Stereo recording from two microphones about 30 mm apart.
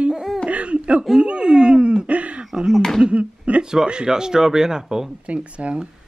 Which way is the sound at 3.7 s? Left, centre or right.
Right.